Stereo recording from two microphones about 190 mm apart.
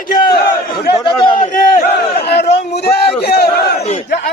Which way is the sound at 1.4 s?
45° left (ahead or behind).